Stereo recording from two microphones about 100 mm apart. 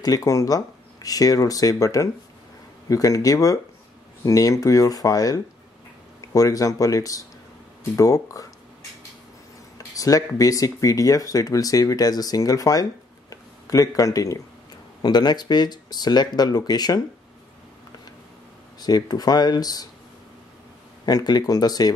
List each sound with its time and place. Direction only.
0.0 s speech: 35° left (ahead or behind)
9.8 s speech: 35° left (ahead or behind)
13.3 s a sound: 35° left (ahead or behind)
15.0 s speech: 45° left (ahead or behind)
18.8 s speech: 40° left (ahead or behind)
21.0 s speech: 40° left (ahead or behind)